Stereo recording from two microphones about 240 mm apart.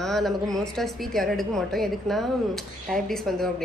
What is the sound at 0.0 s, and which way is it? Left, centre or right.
A woman's voice, centre.